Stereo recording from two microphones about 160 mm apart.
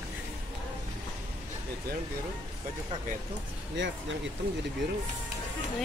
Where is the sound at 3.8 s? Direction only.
90° right.